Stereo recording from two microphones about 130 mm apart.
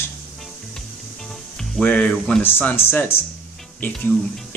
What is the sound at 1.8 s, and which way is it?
A man's voice, 10° left (ahead or behind).